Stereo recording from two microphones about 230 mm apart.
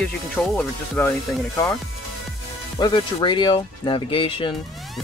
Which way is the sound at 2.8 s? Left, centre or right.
Centre.